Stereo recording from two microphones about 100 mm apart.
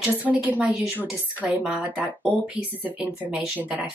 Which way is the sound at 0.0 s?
15° right (ahead or behind).